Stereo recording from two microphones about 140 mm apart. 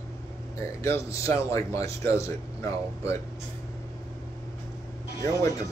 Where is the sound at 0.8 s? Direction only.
20° left (ahead or behind).